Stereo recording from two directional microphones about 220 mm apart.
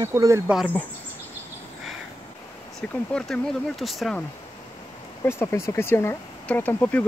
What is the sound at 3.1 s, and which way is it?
Speech, centre (ahead or behind).